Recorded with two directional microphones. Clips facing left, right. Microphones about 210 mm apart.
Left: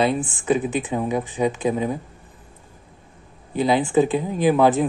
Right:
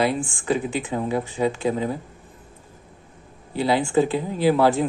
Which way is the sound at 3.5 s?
20° left (ahead or behind).